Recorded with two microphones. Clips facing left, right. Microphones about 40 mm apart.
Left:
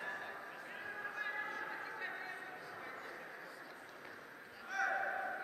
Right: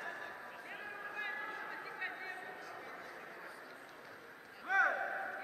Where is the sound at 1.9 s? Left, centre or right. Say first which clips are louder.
Right 1 dB; right.